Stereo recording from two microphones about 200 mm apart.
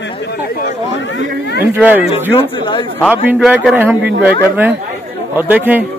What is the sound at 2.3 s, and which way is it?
Speech, 25° left (ahead or behind).